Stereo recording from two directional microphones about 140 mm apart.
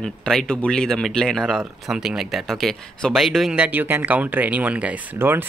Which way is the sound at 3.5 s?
10° right (ahead or behind).